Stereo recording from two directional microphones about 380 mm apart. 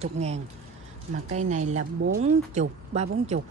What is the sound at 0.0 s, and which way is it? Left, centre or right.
Speech, centre.